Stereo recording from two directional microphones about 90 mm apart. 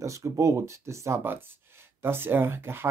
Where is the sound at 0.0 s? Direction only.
35° right (ahead or behind).